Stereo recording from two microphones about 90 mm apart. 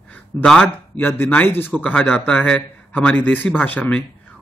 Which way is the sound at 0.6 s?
25° left (ahead or behind).